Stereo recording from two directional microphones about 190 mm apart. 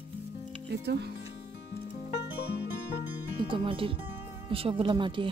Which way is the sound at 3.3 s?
25° right (ahead or behind).